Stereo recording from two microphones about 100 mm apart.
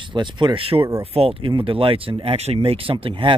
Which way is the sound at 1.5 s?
60° right (ahead or behind).